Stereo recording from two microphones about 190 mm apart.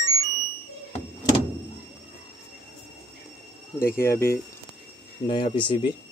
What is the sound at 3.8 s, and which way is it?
Speech, 15° left (ahead or behind).